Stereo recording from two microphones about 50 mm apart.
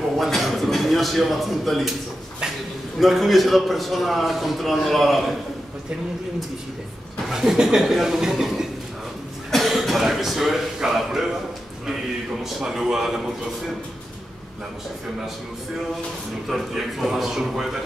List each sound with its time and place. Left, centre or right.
0.2 s a man's voice: centre
3.0 s a man's voice: centre
7.2 s speech: centre
12.5 s speech: centre
16.4 s speech: centre